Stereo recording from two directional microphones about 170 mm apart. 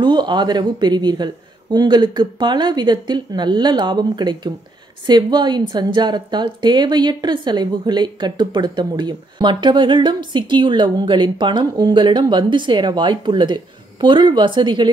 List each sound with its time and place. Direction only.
0.0 s a woman's voice: 25° right (ahead or behind)